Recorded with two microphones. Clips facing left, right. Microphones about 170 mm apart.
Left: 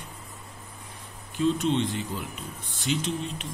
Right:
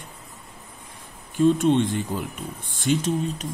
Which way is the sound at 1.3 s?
55° right (ahead or behind).